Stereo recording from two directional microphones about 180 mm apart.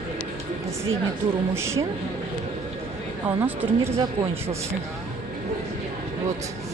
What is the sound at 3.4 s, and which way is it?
Speech, 15° right (ahead or behind).